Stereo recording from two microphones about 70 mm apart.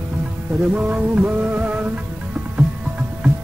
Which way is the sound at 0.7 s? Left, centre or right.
Right.